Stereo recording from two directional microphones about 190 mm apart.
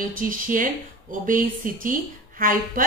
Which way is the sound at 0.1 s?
45° right (ahead or behind).